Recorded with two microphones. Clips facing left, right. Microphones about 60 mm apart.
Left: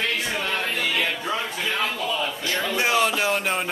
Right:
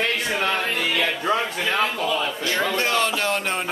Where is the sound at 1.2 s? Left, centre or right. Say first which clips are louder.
Right 4 dB; right.